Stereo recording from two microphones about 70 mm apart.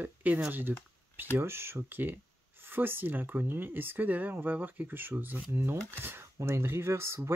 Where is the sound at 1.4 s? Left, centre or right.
Right.